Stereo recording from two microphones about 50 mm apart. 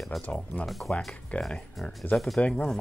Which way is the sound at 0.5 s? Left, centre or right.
Centre.